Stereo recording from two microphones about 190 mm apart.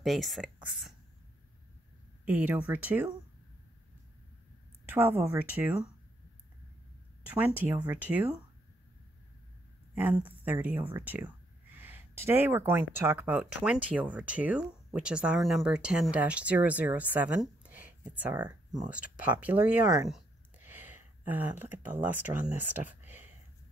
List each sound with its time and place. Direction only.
0.0 s speech: centre (ahead or behind)
2.2 s speech: 10° right (ahead or behind)
4.8 s speech: 10° right (ahead or behind)
7.2 s speech: 10° right (ahead or behind)
9.9 s speech: 10° right (ahead or behind)
20.1 s a sound: 10° right (ahead or behind)